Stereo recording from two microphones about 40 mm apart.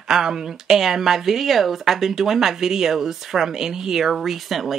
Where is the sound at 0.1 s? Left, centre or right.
Centre.